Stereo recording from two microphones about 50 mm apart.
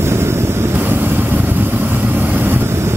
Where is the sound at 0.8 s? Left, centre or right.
Right.